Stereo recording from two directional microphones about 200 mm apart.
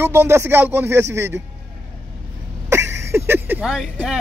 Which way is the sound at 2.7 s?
15° right (ahead or behind).